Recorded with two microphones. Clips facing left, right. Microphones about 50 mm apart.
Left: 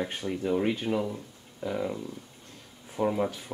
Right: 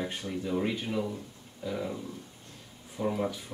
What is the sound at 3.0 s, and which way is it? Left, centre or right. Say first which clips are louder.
Speech: left 4 dB; left.